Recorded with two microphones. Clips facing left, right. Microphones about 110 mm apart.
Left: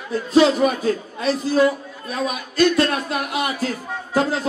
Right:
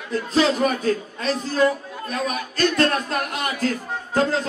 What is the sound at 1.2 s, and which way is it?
Speech, 10° left (ahead or behind).